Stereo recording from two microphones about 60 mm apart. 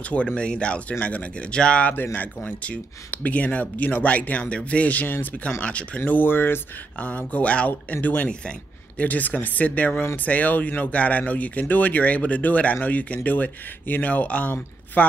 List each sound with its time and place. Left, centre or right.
0.1 s speech: centre
5.6 s speech: left
5.9 s speech: left
7.0 s speech: left
8.3 s a sound: centre
9.0 s speech: left